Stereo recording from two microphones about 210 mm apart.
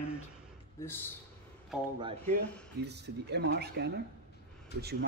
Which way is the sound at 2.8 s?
55° right (ahead or behind).